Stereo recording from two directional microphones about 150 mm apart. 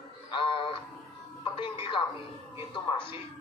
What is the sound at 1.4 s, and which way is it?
Music, 35° left (ahead or behind).